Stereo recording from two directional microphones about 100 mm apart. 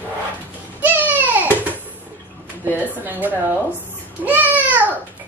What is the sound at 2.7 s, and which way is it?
Speech, 20° right (ahead or behind).